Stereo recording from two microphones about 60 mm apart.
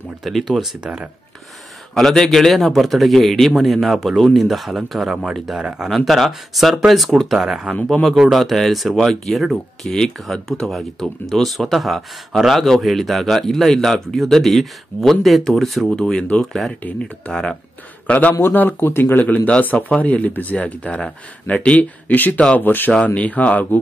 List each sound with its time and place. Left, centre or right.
0.2 s speech: centre
0.7 s speech: centre
2.0 s speech: centre
5.6 s speech: centre
5.9 s speech: centre
7.3 s speech: centre
7.9 s speech: centre
16.0 s speech: centre
17.3 s speech: centre
18.0 s a man's voice: left